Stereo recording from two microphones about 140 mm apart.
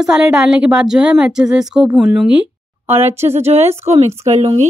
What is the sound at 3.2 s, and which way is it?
Speech, 50° right (ahead or behind).